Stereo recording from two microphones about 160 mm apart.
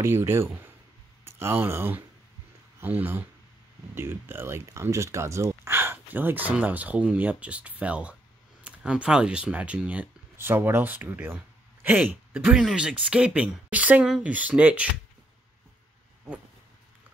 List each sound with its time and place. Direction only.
0.0 s speech: 15° right (ahead or behind)